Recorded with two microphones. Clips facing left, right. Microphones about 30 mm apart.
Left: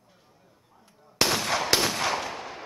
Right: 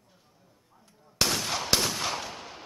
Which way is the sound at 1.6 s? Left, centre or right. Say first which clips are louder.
Left 1 dB; centre.